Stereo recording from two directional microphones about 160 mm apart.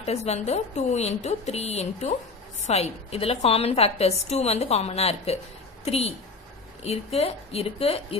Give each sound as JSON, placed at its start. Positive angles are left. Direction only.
{"t": 0.0, "sound": "a woman's voice", "side_deg": 40}